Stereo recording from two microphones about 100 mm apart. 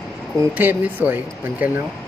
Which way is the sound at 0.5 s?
15° right (ahead or behind).